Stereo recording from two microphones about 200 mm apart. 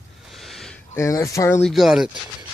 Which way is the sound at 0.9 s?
15° left (ahead or behind).